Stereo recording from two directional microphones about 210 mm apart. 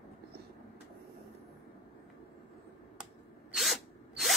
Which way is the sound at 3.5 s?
Centre (ahead or behind).